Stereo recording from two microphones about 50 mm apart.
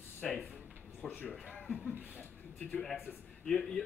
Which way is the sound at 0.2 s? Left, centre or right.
Centre.